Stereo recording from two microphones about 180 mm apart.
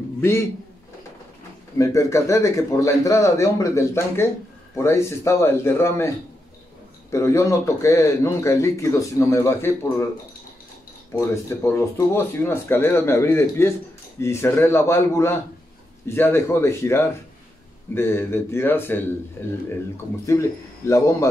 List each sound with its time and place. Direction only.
0.2 s a man's voice: 15° left (ahead or behind)
1.8 s a man's voice: 15° left (ahead or behind)
11.1 s a man's voice: 15° left (ahead or behind)
20.2 s a man's voice: 15° left (ahead or behind)